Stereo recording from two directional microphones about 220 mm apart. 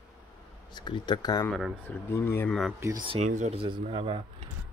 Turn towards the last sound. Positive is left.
turn(degrees=-25)  # may be behind; listen again after turning